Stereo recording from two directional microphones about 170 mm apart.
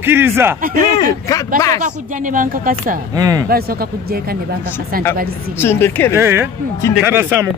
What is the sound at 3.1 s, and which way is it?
Speech, 20° right (ahead or behind).